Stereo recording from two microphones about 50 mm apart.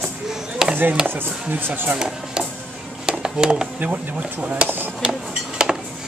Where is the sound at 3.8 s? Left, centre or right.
Right.